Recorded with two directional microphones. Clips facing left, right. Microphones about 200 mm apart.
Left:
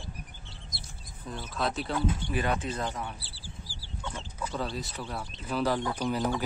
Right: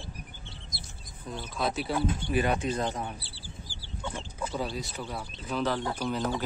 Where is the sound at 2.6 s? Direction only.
25° right (ahead or behind).